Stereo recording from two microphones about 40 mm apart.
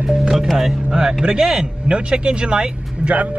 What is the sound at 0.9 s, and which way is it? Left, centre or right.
Speech, centre.